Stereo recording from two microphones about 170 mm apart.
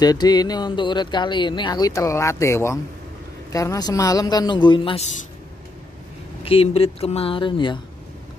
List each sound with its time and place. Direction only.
0.0 s speech: 25° left (ahead or behind)
6.4 s speech: 35° left (ahead or behind)